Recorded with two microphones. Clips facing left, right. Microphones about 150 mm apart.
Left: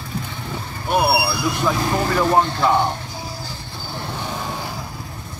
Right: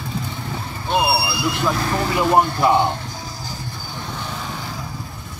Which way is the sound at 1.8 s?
20° left (ahead or behind).